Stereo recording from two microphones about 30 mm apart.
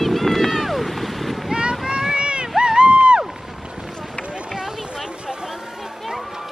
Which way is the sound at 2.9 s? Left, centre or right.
Right.